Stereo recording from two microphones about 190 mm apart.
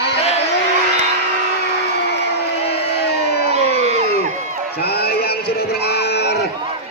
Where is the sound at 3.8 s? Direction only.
35° right (ahead or behind).